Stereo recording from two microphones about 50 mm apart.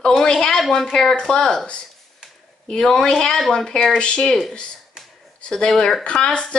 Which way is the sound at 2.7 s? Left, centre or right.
Centre.